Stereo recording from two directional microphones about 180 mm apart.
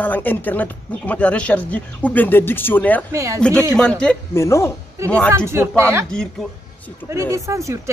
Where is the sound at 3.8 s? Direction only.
5° left (ahead or behind).